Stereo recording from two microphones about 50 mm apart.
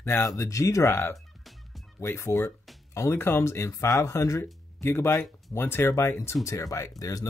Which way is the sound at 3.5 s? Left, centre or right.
Left.